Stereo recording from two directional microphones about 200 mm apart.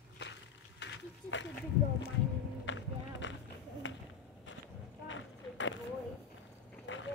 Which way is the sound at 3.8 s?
70° left (ahead or behind).